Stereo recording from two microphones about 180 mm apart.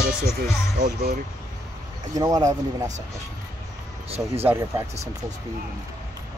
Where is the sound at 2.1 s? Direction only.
20° right (ahead or behind).